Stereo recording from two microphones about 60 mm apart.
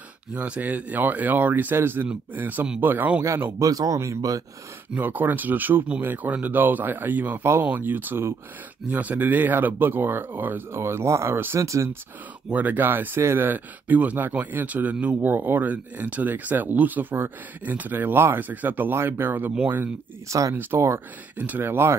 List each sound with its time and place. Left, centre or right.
0.3 s speech: centre
3.2 s speech: right
3.6 s speech: right
4.9 s speech: right
8.9 s speech: right
10.7 s speech: right
11.3 s speech: right
11.6 s speech: right
12.4 s speech: right
20.2 s speech: right
20.5 s speech: right
21.4 s speech: right
21.6 s speech: right